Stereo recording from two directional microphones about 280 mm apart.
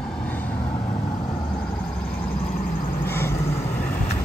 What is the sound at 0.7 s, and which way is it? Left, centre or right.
Vehicle, centre.